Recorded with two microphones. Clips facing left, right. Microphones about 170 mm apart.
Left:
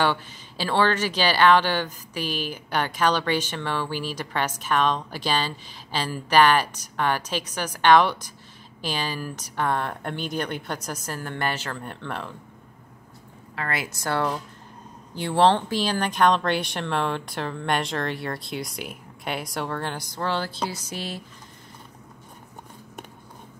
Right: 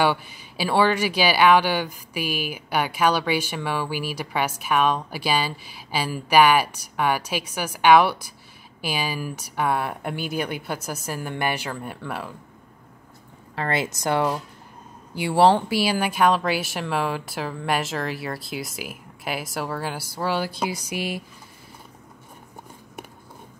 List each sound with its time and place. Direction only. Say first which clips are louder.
0.0 s speech: right 2 dB; 10° right (ahead or behind)
13.6 s speech: right 5 dB; 25° right (ahead or behind)